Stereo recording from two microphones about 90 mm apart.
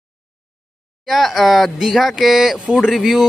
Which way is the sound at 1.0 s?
Centre (ahead or behind).